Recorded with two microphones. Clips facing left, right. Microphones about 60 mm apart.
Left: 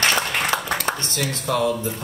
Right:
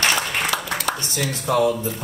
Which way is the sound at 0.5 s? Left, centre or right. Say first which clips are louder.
Left 2 dB; left.